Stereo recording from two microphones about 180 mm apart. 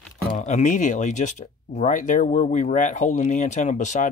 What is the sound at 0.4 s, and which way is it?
Speech, 40° left (ahead or behind).